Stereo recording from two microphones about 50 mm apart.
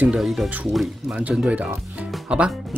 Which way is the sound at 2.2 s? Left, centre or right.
Right.